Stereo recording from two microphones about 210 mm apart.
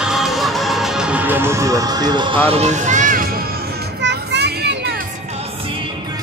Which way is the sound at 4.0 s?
55° right (ahead or behind).